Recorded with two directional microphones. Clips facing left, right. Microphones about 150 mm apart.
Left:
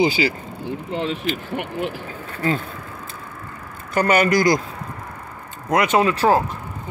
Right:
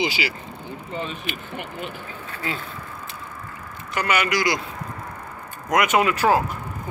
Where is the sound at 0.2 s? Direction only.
35° left (ahead or behind).